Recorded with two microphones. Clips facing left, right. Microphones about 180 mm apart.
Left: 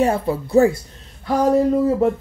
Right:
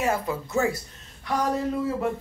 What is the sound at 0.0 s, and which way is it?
Speech, 30° left (ahead or behind).